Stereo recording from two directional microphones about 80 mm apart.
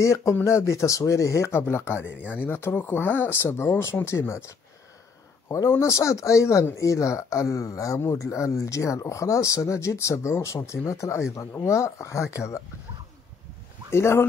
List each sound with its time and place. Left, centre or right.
0.0 s speech: left
5.7 s speech: left
13.9 s speech: left